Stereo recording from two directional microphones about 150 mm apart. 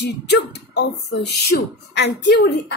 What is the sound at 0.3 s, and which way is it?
Speech, 90° left.